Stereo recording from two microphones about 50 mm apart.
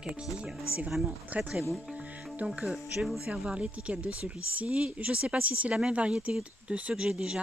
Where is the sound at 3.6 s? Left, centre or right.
Right.